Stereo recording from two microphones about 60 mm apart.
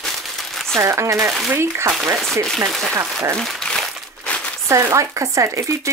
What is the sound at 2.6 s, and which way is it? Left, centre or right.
Speech, centre.